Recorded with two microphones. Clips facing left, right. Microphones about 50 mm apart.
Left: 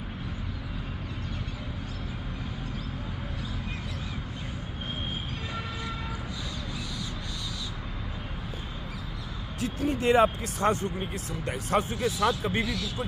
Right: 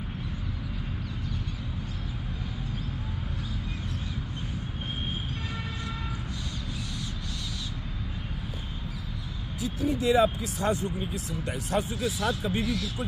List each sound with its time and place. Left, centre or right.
9.6 s speech: left